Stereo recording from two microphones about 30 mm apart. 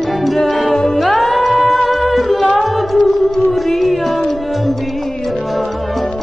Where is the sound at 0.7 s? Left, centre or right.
Centre.